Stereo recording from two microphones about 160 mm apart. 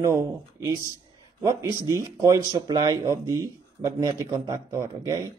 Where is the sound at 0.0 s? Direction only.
20° right (ahead or behind).